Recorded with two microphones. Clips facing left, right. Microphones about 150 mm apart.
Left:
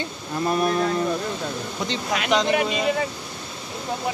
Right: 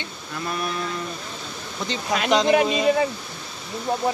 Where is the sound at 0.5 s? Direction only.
40° left (ahead or behind).